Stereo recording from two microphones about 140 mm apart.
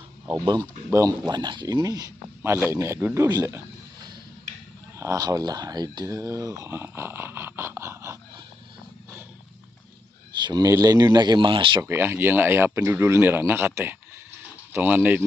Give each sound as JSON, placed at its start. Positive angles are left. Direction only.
{"t": 0.3, "sound": "speech", "side_deg": -30}
{"t": 3.3, "sound": "a sound", "side_deg": -20}
{"t": 4.9, "sound": "speech", "side_deg": -25}
{"t": 10.3, "sound": "speech", "side_deg": -30}
{"t": 11.8, "sound": "speech", "side_deg": -15}